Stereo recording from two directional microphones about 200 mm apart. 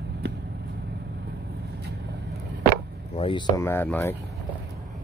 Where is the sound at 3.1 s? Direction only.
25° left (ahead or behind).